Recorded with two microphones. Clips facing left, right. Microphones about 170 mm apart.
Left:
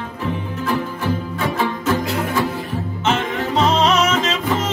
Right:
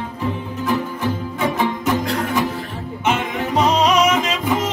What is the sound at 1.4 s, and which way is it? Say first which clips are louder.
Music: right 1 dB; 15° right (ahead or behind).